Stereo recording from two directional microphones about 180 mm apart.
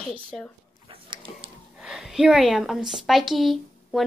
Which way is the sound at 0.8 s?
30° right (ahead or behind).